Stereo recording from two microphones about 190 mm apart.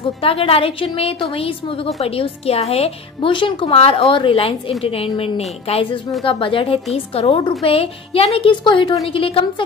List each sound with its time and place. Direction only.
0.2 s a woman's voice: 30° left (ahead or behind)